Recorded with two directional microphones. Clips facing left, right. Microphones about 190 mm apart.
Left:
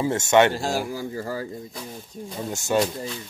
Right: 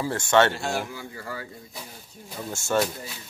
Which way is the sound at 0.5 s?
35° left (ahead or behind).